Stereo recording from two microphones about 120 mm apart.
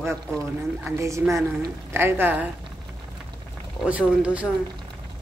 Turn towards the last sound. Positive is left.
turn(degrees=-10)  # may be behind; listen again after turning